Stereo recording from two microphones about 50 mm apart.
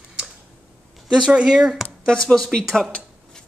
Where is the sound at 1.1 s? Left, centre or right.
Centre.